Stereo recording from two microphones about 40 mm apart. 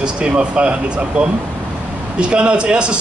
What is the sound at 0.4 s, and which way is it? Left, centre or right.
A man's voice, right.